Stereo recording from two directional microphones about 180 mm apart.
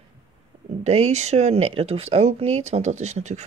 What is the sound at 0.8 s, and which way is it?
Speech, 40° right (ahead or behind).